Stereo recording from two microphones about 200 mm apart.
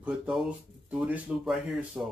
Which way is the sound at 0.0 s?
5° right (ahead or behind).